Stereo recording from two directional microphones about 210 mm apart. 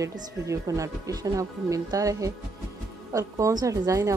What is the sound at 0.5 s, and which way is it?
A woman's voice, 15° right (ahead or behind).